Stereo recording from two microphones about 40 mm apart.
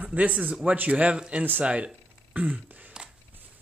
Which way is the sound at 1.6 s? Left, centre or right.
Right.